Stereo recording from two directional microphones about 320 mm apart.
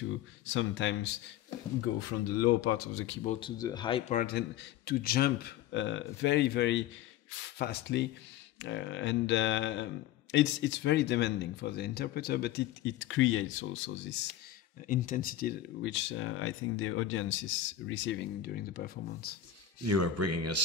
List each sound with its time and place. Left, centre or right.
0.5 s speech: left
2.0 s speech: left
3.3 s a man's voice: centre; by 14.1 s left
14.9 s speech: left
19.8 s speech: right